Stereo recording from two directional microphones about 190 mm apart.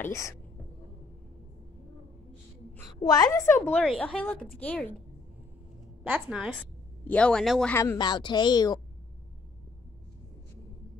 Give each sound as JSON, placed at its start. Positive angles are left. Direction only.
{"t": 0.0, "sound": "a woman's voice", "side_deg": 15}
{"t": 3.0, "sound": "a woman's voice", "side_deg": 20}
{"t": 6.0, "sound": "speech", "side_deg": -5}
{"t": 7.7, "sound": "a woman's voice", "side_deg": 15}